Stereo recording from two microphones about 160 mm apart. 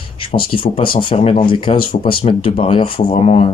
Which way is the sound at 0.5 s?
35° left (ahead or behind).